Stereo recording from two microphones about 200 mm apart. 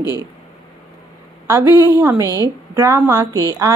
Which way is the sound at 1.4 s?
15° right (ahead or behind).